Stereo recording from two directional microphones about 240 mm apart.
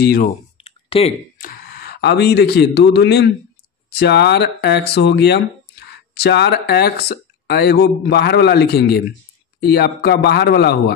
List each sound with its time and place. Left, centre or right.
0.0 s speech: left
0.6 s clicking: left
1.4 s speech: left